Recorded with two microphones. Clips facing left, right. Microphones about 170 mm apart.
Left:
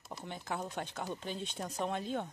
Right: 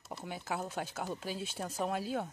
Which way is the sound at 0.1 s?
5° right (ahead or behind).